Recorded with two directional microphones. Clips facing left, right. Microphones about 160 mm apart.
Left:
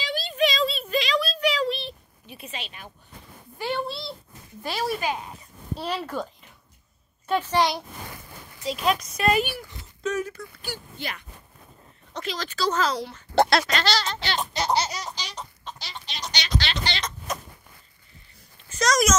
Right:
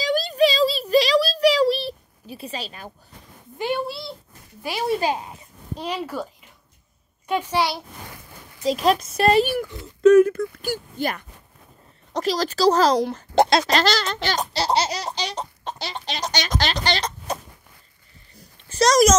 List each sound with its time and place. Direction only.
0.0 s child singing: 40° right (ahead or behind)
3.5 s a child's voice: 15° right (ahead or behind)
3.8 s speech: centre (ahead or behind)
4.6 s a child's voice: 15° right (ahead or behind)
7.2 s a child's voice: 10° right (ahead or behind)
8.6 s speech: 35° right (ahead or behind)
9.6 s speech: 60° right (ahead or behind); by 13.2 s 40° right (ahead or behind)
13.3 s a sound: 20° right (ahead or behind)
13.7 s speech: 35° right (ahead or behind)
13.9 s speech: 50° right (ahead or behind); by 14.9 s 30° right (ahead or behind)
14.9 s baby laughter: 70° right (ahead or behind)
15.6 s chicken: 60° right (ahead or behind)
16.2 s speech: 45° right (ahead or behind)
18.7 s a child's voice: 35° right (ahead or behind)